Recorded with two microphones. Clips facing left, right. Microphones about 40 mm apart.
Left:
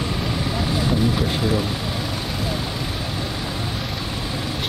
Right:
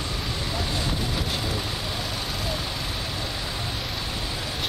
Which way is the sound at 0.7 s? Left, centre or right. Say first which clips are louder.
Left 7 dB; centre.